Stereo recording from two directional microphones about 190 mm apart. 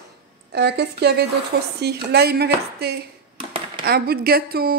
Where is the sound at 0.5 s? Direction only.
60° right (ahead or behind).